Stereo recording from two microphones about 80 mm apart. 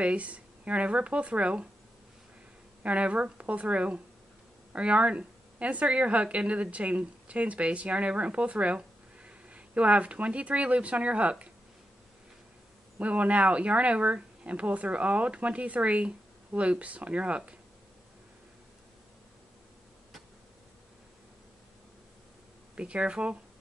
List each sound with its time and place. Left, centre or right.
0.0 s speech: centre
2.8 s speech: centre
13.0 s speech: centre
22.8 s speech: centre